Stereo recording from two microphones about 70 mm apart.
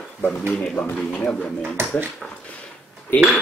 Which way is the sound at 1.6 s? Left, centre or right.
Right.